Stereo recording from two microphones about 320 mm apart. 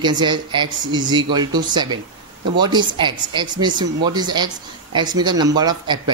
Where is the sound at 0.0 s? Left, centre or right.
Centre.